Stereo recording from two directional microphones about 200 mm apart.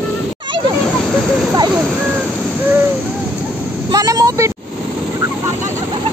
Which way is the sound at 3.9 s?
20° right (ahead or behind).